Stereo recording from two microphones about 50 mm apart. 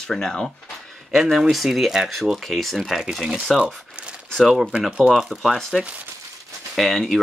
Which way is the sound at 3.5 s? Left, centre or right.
Right.